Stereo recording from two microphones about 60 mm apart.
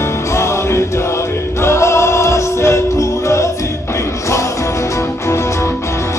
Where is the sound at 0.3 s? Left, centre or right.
Left.